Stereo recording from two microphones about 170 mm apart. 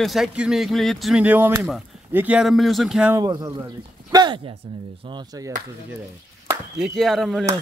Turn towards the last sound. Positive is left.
turn(degrees=0)  # may be behind; listen again after turning